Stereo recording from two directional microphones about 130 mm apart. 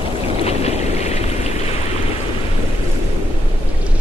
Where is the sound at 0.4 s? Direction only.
55° left (ahead or behind).